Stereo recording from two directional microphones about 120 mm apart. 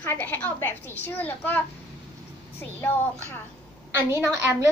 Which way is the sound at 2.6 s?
15° left (ahead or behind).